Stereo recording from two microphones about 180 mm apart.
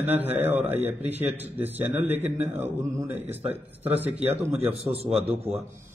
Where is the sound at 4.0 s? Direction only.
35° right (ahead or behind).